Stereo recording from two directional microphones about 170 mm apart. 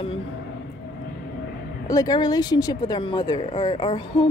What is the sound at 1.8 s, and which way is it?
Speech, 20° left (ahead or behind).